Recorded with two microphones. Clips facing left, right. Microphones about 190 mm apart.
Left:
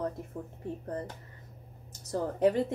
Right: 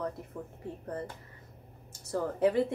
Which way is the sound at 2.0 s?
40° left (ahead or behind).